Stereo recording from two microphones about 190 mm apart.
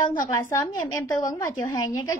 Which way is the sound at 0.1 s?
45° left (ahead or behind).